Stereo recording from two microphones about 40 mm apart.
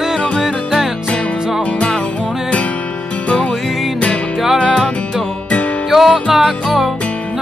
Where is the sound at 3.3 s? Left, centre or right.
Left.